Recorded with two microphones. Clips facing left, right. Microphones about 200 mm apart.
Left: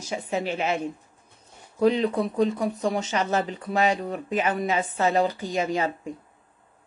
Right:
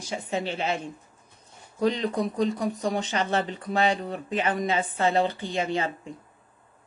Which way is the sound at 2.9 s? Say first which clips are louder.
Left 1 dB; 35° right (ahead or behind).